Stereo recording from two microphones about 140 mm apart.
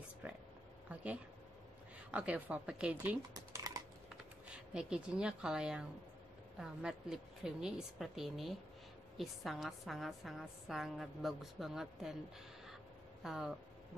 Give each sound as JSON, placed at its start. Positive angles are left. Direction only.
{"t": 0.2, "sound": "a sound", "side_deg": -10}
{"t": 2.0, "sound": "a woman's voice", "side_deg": -10}
{"t": 3.3, "sound": "typing", "side_deg": -25}
{"t": 4.7, "sound": "a woman's voice", "side_deg": -5}
{"t": 13.2, "sound": "a woman's voice", "side_deg": 0}